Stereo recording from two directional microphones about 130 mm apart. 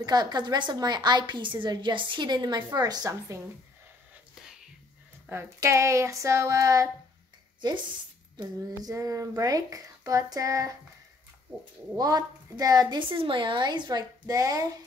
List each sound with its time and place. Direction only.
0.0 s a woman's voice: 30° right (ahead or behind)
5.3 s speech: 20° right (ahead or behind)
8.4 s speech: 30° right (ahead or behind)
12.0 s a woman's voice: 30° right (ahead or behind)